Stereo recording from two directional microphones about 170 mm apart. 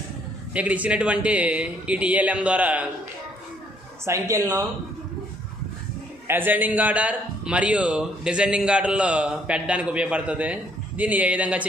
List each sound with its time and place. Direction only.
0.5 s a man's voice: 10° right (ahead or behind)
4.0 s a woman's voice: 20° right (ahead or behind)
6.2 s a man's voice: 10° right (ahead or behind)